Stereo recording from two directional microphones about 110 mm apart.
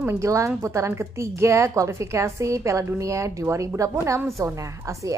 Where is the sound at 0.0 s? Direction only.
25° right (ahead or behind).